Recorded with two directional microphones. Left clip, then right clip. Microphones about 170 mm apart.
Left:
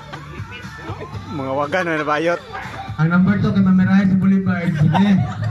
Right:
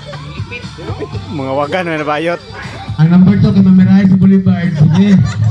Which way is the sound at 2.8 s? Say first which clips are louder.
Right 6 dB; 5° right (ahead or behind).